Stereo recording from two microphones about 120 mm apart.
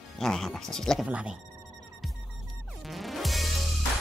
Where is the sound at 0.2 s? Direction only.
Centre (ahead or behind).